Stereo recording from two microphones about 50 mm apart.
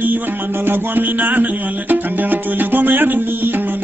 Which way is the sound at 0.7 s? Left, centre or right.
Right.